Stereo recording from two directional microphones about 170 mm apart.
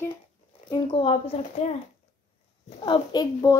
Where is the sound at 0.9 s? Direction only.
35° left (ahead or behind).